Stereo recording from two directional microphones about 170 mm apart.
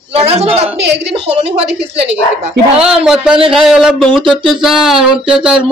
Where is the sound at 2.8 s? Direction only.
5° right (ahead or behind).